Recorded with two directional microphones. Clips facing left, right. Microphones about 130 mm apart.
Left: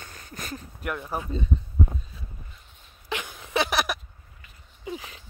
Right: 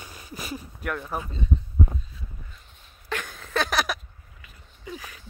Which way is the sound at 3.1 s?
15° left (ahead or behind).